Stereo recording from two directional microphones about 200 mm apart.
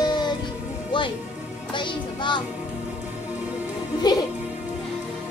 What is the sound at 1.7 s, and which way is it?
Child singing, 25° left (ahead or behind).